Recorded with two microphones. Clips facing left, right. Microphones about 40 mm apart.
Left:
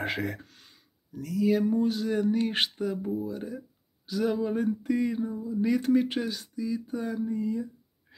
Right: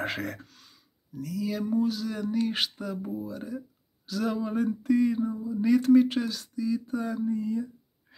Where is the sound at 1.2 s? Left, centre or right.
Left.